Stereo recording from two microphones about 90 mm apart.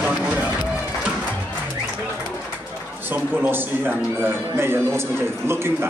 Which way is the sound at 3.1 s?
25° right (ahead or behind).